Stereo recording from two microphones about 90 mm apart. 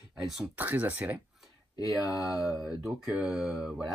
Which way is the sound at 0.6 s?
20° right (ahead or behind).